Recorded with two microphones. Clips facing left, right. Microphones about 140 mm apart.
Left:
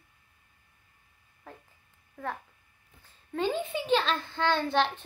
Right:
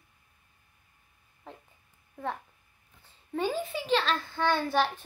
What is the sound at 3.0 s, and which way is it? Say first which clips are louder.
A child's voice: even; 10° right (ahead or behind).